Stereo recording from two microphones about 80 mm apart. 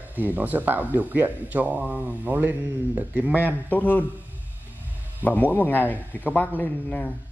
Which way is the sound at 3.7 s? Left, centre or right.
Left.